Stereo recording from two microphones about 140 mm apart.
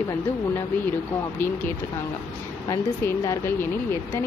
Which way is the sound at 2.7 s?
20° left (ahead or behind).